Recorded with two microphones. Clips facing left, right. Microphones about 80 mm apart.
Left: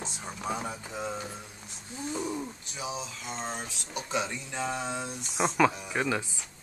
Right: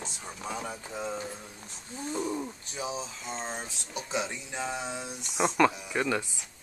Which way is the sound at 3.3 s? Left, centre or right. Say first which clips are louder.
Left 1 dB; right.